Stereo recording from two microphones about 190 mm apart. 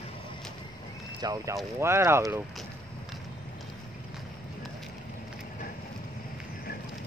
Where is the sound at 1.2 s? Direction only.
20° right (ahead or behind).